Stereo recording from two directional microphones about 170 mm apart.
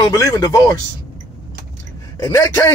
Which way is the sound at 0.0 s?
20° left (ahead or behind).